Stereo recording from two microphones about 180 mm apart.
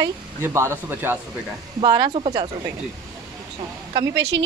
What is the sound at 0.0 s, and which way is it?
Speech, 15° right (ahead or behind).